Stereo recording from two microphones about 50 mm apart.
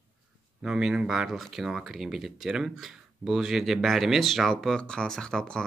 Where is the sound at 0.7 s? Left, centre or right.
Centre.